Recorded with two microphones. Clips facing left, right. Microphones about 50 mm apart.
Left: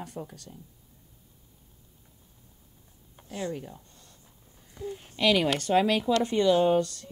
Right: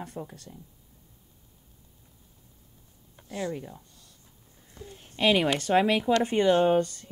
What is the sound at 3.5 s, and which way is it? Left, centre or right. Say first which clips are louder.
Speech: right 1 dB; centre.